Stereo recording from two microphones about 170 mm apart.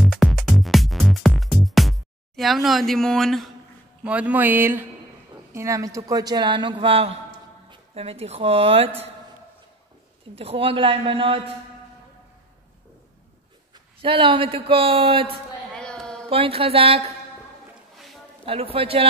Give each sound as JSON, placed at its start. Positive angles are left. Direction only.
{"t": 0.0, "sound": "music", "side_deg": 0}
{"t": 4.0, "sound": "speech", "side_deg": -10}
{"t": 10.3, "sound": "speech", "side_deg": -35}
{"t": 14.0, "sound": "speech", "side_deg": -30}
{"t": 15.7, "sound": "a sound", "side_deg": 5}
{"t": 16.3, "sound": "speech", "side_deg": -35}
{"t": 18.4, "sound": "speech", "side_deg": -35}